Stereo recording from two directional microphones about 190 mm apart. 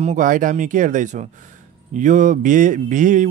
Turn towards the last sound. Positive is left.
turn(degrees=-40)  # may be behind; listen again after turning